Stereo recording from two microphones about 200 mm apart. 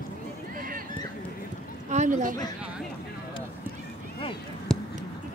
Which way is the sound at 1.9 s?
40° right (ahead or behind).